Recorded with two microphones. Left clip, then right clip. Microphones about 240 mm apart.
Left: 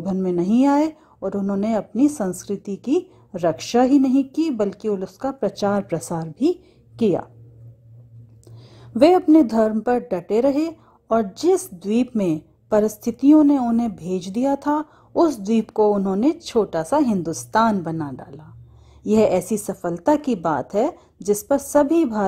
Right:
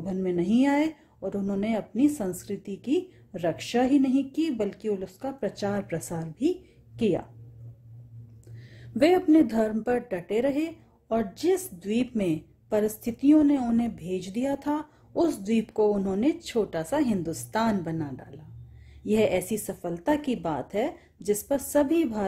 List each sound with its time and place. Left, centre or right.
0.0 s a woman's voice: left
8.9 s a woman's voice: left